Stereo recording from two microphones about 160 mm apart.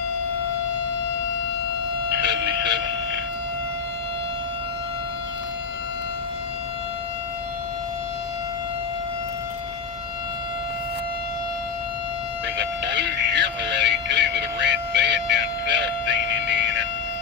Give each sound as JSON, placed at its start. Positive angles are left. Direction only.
{"t": 2.0, "sound": "vehicle", "side_deg": -90}
{"t": 12.5, "sound": "music", "side_deg": -90}